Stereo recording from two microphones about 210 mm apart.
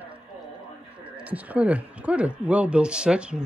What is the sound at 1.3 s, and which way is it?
Speech, 5° right (ahead or behind).